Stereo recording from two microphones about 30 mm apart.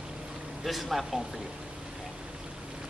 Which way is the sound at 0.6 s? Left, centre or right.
Centre.